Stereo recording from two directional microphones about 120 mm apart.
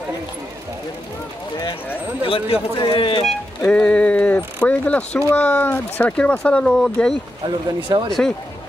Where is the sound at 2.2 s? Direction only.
50° left (ahead or behind).